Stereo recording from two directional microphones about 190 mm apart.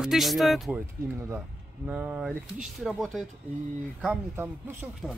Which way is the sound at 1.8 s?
5° right (ahead or behind).